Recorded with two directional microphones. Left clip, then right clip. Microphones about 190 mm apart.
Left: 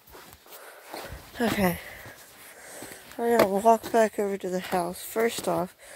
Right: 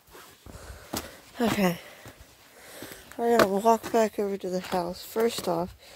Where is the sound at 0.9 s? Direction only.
5° left (ahead or behind).